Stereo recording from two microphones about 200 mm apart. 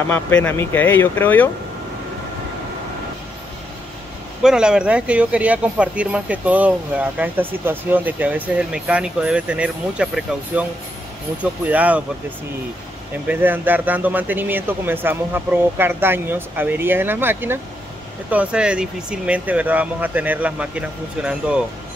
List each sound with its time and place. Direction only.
0.1 s speech: 10° left (ahead or behind)
4.4 s speech: 5° right (ahead or behind)
13.3 s speech: 10° right (ahead or behind)